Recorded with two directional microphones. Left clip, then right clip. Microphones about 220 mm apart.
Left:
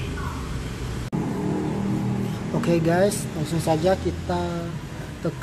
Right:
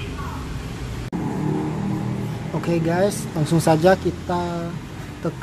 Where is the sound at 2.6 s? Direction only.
5° left (ahead or behind).